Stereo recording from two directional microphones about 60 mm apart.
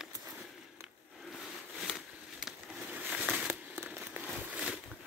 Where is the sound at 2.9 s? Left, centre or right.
Right.